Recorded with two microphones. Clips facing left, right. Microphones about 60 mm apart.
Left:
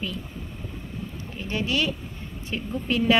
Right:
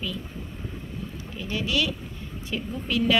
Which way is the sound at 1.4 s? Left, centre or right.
Left.